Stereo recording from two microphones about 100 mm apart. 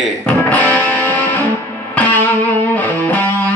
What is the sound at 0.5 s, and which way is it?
Music, 15° left (ahead or behind).